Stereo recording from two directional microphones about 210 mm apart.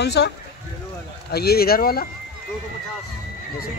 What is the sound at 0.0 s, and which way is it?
Speech, 55° left (ahead or behind).